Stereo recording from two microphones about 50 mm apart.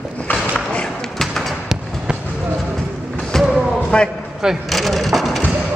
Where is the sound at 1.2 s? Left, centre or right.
Centre.